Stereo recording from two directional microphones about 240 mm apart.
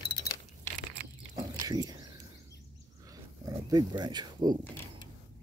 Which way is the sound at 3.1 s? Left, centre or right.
Centre.